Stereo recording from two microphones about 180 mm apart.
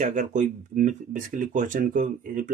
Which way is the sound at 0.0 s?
45° right (ahead or behind).